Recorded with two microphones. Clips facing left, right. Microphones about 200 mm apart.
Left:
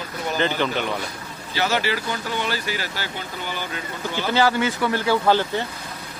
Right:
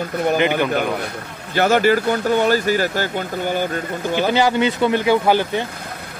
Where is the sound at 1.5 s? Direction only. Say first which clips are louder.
Right 8 dB; 50° right (ahead or behind).